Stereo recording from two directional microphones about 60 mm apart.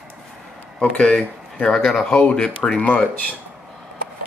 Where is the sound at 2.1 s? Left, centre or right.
Centre.